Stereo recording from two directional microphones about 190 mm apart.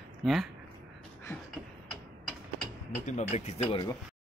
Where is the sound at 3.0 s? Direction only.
35° left (ahead or behind).